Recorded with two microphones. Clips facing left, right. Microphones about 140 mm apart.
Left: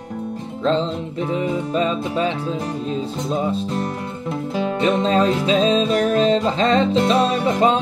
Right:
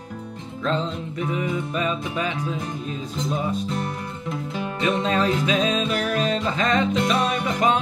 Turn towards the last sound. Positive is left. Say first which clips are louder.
# left 5 dB
turn(degrees=30)  # may be behind; listen again after turning